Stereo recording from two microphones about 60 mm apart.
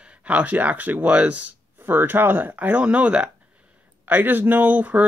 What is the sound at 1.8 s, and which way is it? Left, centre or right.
Speech, right.